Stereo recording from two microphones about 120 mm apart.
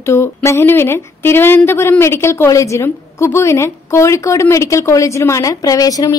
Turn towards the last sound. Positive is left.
turn(degrees=30)  # may be behind; listen again after turning